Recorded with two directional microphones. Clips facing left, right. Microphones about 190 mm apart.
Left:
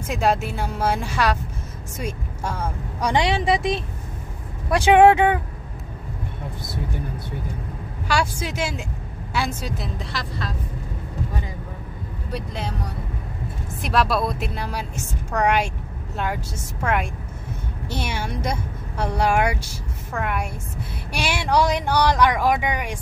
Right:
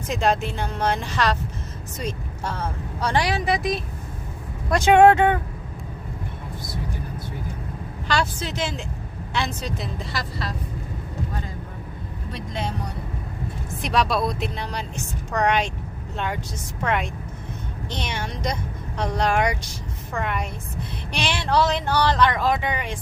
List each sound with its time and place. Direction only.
0.1 s speech: 5° left (ahead or behind); by 3.8 s 25° left (ahead or behind)
4.6 s speech: 10° left (ahead or behind)
8.1 s speech: 10° left (ahead or behind)
12.3 s speech: 5° left (ahead or behind)
13.7 s a woman's voice: 5° left (ahead or behind)